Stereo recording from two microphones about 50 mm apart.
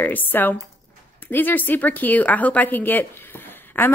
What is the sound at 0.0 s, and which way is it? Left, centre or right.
A woman's voice, left.